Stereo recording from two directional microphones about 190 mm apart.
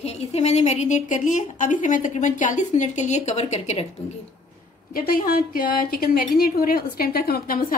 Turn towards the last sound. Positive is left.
turn(degrees=50)  # may be behind; listen again after turning